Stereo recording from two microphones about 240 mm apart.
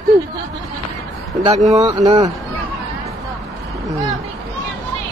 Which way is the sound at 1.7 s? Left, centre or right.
Right.